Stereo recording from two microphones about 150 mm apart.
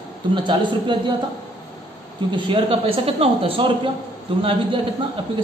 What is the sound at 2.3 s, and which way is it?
A man's voice, 35° right (ahead or behind).